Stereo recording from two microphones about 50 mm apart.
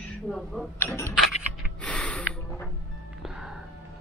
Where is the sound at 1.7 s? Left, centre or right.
Left.